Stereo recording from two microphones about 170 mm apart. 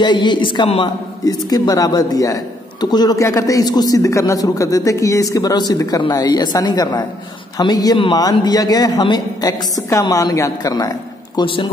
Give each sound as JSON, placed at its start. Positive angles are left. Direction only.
{"t": 0.0, "sound": "a man's voice", "side_deg": 25}